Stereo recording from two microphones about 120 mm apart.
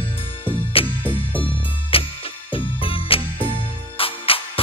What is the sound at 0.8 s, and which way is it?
Music, 50° left (ahead or behind).